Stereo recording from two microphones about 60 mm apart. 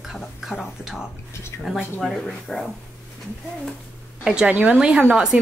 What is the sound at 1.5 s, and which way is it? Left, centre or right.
Speech, left.